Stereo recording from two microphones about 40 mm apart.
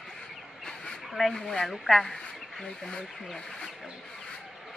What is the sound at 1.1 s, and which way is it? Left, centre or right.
Speech, centre.